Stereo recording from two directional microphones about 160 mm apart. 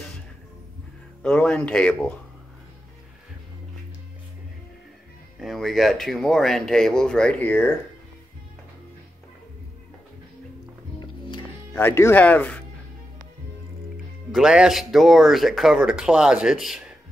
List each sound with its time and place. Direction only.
1.2 s speech: 5° left (ahead or behind)
5.4 s speech: centre (ahead or behind)
11.0 s music: 30° left (ahead or behind)
11.7 s speech: 15° left (ahead or behind)
14.3 s speech: 5° right (ahead or behind)